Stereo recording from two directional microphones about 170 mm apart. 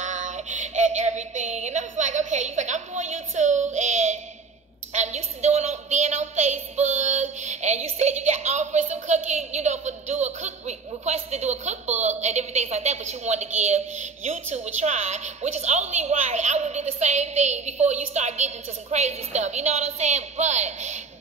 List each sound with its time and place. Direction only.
0.0 s child singing: 45° right (ahead or behind)
4.9 s a woman's voice: 40° right (ahead or behind)